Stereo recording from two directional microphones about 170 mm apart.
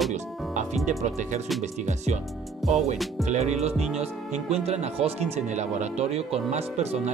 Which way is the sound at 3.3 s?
40° right (ahead or behind).